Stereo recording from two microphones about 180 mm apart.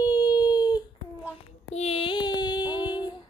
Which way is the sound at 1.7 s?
35° left (ahead or behind).